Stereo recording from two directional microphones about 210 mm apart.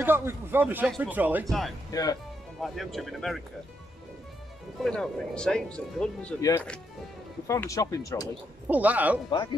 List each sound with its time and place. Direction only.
0.0 s speech: 10° right (ahead or behind)
1.9 s speech: 15° left (ahead or behind)
2.6 s speech: centre (ahead or behind)
4.7 s speech: centre (ahead or behind)
8.6 s speech: 5° right (ahead or behind)
9.3 s speech: 20° left (ahead or behind)